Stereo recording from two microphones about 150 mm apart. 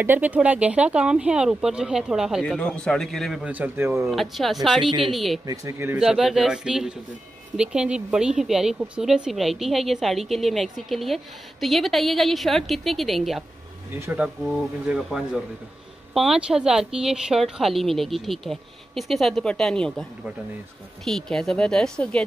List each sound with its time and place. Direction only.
0.0 s speech: 10° right (ahead or behind)
4.0 s speech: centre (ahead or behind)
5.5 s speech: 15° right (ahead or behind)
5.9 s speech: 5° right (ahead or behind)
13.9 s speech: 15° right (ahead or behind)
14.9 s speech: 5° right (ahead or behind)